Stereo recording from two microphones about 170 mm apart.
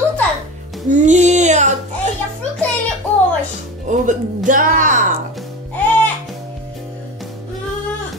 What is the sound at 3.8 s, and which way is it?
A woman's voice, 50° right (ahead or behind).